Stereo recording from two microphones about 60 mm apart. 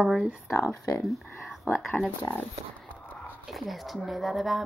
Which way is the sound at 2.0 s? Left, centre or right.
Left.